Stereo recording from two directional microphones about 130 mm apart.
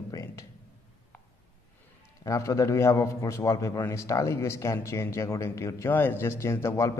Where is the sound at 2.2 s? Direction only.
25° left (ahead or behind).